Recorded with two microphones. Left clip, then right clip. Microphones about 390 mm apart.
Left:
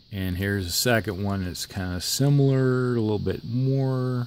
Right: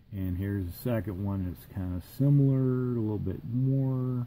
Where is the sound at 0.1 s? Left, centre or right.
Left.